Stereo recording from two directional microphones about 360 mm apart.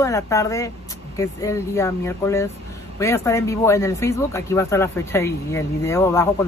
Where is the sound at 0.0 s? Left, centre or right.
Centre.